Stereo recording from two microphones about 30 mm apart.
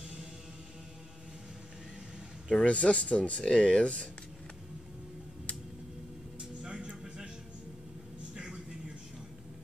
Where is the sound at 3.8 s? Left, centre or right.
Left.